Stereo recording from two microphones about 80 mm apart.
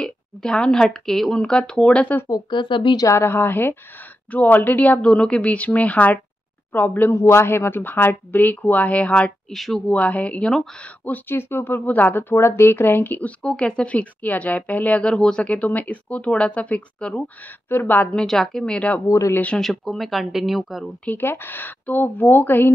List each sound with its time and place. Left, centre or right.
0.0 s speech: centre
2.5 s speech: left
3.0 s speech: left
7.2 s speech: left; by 9.3 s centre
9.5 s speech: centre
9.8 s speech: centre
11.1 s speech: left
13.4 s speech: centre
18.1 s speech: centre
19.0 s speech: left
19.6 s speech: centre
21.0 s speech: left